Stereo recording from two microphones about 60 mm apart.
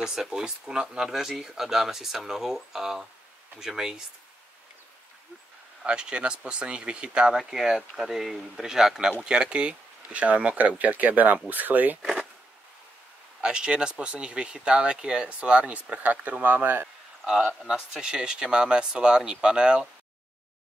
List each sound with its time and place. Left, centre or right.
0.0 s speech: centre
5.9 s speech: centre
7.3 s speech: centre; by 12.0 s right
12.0 s speech: centre
13.4 s speech: centre; by 16.9 s right
17.2 s speech: centre